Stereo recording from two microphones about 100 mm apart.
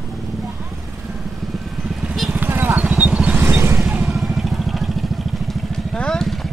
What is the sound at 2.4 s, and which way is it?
Vehicle, 20° right (ahead or behind).